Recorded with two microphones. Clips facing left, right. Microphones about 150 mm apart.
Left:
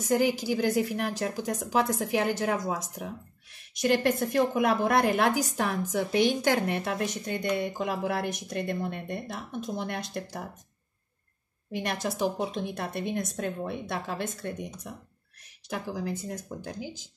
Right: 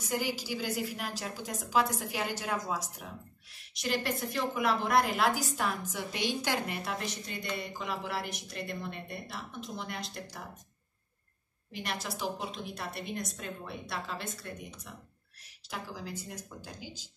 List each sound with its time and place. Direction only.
0.0 s a woman's voice: 55° left (ahead or behind)
11.7 s a woman's voice: 55° left (ahead or behind)